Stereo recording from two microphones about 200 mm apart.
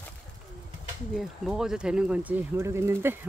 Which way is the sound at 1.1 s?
5° right (ahead or behind).